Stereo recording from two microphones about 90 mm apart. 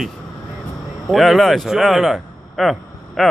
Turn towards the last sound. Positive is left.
turn(degrees=0)  # may be behind; listen again after turning